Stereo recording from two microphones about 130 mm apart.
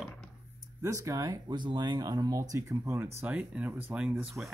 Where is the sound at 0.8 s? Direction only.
25° right (ahead or behind).